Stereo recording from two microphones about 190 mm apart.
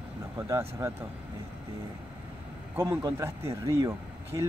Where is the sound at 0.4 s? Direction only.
15° right (ahead or behind).